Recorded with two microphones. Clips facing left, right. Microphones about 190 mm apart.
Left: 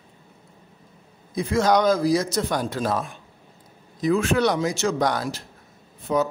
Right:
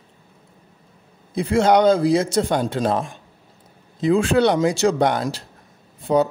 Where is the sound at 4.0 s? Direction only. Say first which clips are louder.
Right 4 dB; 30° right (ahead or behind).